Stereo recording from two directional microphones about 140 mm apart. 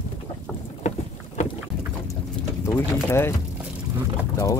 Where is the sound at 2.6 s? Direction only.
15° left (ahead or behind).